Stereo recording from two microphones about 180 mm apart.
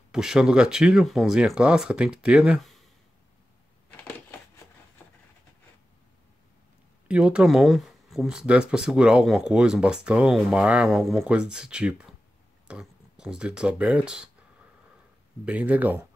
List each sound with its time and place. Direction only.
0.1 s speech: 5° right (ahead or behind)
3.9 s a sound: 10° left (ahead or behind)
7.1 s speech: 5° right (ahead or behind)
15.4 s speech: 10° right (ahead or behind)